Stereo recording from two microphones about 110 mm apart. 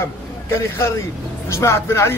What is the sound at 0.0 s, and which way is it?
A man's voice, 25° left (ahead or behind).